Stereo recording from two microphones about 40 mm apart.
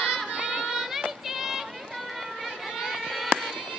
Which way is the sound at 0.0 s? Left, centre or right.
Centre.